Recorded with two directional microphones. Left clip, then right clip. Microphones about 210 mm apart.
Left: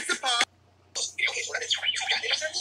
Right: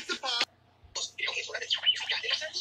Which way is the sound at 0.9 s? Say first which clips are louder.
Left 5 dB; 30° left (ahead or behind).